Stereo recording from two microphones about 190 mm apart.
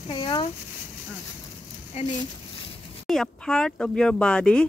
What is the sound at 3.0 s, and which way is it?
Speech, centre (ahead or behind).